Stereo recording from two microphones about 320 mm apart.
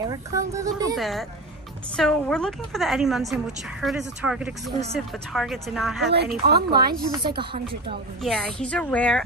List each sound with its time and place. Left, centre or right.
0.0 s speech: centre
0.9 s a woman's voice: centre
6.1 s speech: right
7.1 s speech: centre
8.2 s a woman's voice: centre